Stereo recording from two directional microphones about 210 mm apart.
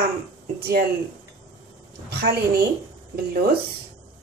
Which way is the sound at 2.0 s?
45° right (ahead or behind).